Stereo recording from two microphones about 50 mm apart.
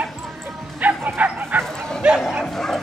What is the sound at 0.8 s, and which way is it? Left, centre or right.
Bow-wow, right.